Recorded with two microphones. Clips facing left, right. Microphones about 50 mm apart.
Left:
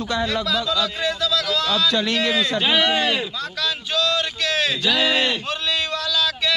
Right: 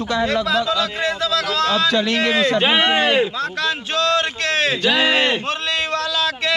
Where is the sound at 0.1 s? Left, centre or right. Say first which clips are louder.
Right 4 dB; right.